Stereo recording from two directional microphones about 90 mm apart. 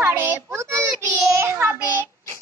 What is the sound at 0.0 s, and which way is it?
Child singing, 25° right (ahead or behind).